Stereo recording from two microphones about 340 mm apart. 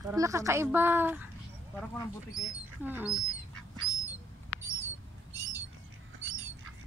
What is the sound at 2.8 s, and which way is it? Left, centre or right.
Speech, centre.